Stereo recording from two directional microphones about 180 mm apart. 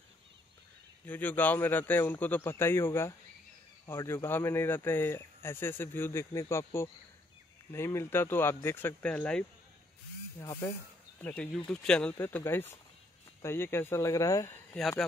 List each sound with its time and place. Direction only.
1.0 s speech: 10° left (ahead or behind)
10.4 s speech: 20° left (ahead or behind)
11.1 s speech: 5° left (ahead or behind)
14.8 s speech: 5° left (ahead or behind)